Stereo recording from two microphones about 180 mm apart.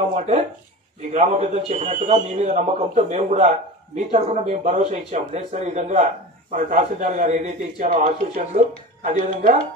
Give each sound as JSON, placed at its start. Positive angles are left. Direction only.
{"t": 1.1, "sound": "a man's voice", "side_deg": -40}